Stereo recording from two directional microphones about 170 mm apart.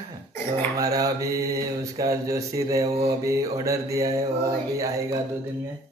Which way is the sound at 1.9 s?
20° right (ahead or behind).